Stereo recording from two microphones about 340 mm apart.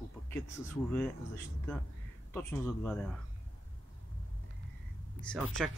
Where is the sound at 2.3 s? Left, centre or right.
Centre.